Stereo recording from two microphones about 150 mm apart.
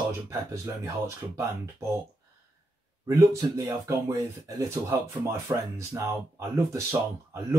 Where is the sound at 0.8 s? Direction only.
20° right (ahead or behind).